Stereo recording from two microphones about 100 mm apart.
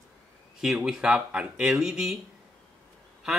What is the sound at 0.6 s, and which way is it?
A man's voice, 5° right (ahead or behind).